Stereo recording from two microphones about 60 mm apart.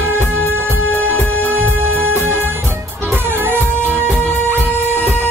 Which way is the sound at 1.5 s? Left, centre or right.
Right.